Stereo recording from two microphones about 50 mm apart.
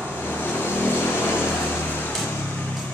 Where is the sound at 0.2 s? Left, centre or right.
Left.